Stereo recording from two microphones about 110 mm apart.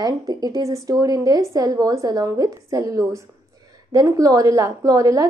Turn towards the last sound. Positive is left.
turn(degrees=-30)  # may be behind; listen again after turning